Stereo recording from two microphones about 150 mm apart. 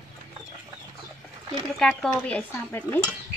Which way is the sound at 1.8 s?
5° left (ahead or behind).